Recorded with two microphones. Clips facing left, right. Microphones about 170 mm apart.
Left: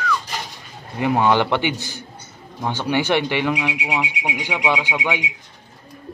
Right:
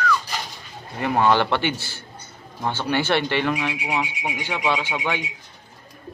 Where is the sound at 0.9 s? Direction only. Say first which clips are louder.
Left 2 dB; 15° left (ahead or behind).